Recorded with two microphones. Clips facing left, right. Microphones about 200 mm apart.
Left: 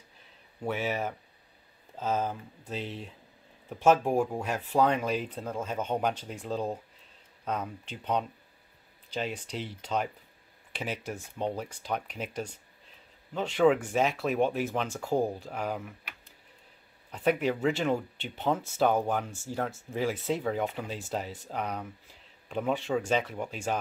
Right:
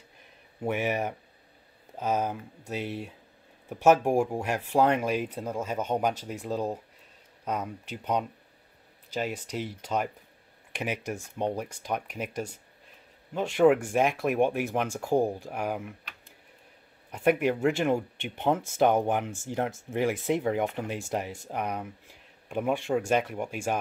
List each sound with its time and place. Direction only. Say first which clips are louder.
0.6 s speech: right 3 dB; 15° right (ahead or behind)
17.1 s speech: right 3 dB; 10° right (ahead or behind)